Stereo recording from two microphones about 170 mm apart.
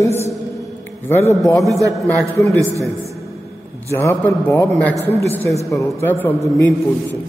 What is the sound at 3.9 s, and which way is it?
A man's voice, 15° left (ahead or behind).